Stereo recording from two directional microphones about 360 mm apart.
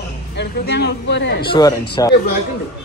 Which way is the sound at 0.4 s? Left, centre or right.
Left.